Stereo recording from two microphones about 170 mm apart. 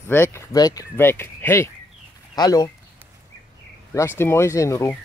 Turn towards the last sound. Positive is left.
turn(degrees=15)  # may be behind; listen again after turning